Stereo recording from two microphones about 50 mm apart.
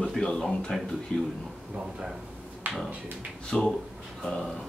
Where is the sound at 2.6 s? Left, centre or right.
Right.